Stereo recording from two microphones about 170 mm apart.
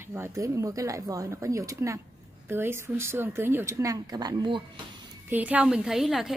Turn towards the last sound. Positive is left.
turn(degrees=0)  # may be behind; listen again after turning